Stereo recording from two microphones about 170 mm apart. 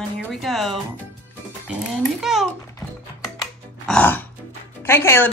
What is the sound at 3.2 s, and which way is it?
Music, 5° left (ahead or behind).